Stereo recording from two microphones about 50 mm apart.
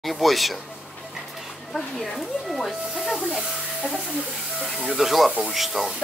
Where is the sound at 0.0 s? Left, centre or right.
Centre.